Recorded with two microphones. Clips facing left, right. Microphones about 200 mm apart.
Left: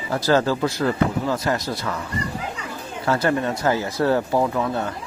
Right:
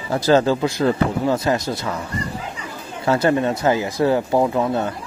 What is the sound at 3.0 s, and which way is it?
Speech, 20° right (ahead or behind).